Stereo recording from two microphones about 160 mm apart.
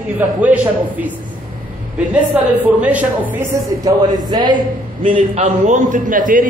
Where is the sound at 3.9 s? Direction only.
25° right (ahead or behind).